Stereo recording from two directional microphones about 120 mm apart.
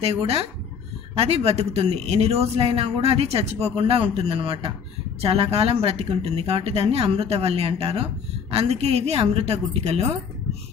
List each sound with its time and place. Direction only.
0.0 s a man's voice: 55° right (ahead or behind)